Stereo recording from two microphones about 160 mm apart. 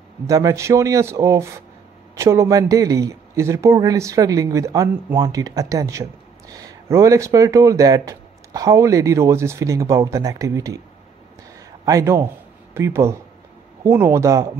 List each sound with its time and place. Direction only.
0.3 s speech: 20° right (ahead or behind)
11.8 s speech: 20° right (ahead or behind)